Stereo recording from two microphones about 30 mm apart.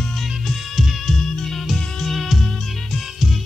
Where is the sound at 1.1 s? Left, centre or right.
Centre.